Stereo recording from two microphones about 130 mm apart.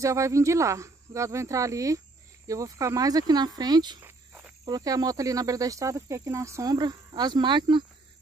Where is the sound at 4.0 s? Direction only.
15° right (ahead or behind).